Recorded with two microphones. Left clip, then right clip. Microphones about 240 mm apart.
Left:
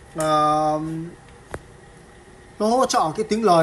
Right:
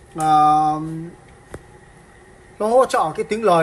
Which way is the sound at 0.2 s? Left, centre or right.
Centre.